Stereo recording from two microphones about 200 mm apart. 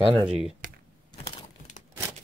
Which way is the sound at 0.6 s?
45° right (ahead or behind).